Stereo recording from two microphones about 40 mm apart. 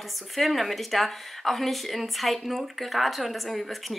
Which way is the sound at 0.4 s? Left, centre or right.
Centre.